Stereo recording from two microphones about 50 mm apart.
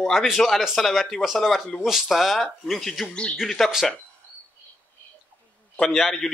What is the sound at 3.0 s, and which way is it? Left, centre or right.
Speech, centre.